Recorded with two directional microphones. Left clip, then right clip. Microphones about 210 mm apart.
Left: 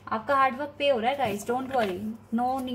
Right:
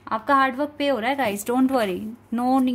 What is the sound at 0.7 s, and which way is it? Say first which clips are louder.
Speech: right 1 dB; 55° right (ahead or behind).